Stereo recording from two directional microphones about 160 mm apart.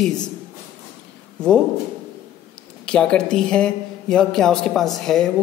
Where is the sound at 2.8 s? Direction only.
5° left (ahead or behind).